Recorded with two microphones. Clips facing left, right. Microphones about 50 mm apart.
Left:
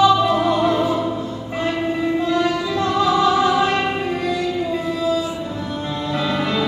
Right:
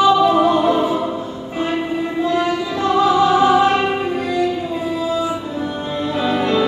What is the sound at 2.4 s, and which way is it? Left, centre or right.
Music, centre.